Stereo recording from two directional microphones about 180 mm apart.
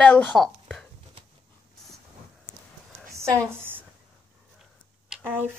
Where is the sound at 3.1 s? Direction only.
15° right (ahead or behind).